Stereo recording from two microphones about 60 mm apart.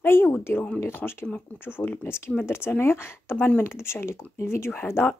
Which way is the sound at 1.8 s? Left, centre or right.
Left.